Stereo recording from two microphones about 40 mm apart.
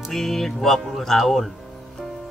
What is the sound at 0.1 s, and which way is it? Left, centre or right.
Speech, centre.